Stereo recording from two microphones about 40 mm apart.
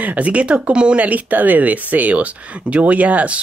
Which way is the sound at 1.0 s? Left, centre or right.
Right.